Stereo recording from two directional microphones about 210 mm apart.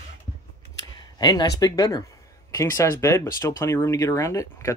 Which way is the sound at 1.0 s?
20° left (ahead or behind).